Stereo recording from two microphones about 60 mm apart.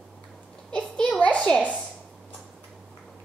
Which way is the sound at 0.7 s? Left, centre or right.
Centre.